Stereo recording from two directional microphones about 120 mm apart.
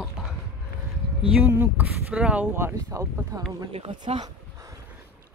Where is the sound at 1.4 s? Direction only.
15° right (ahead or behind).